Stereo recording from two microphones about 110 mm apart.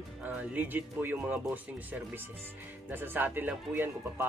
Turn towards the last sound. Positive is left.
turn(degrees=-15)  # may be behind; listen again after turning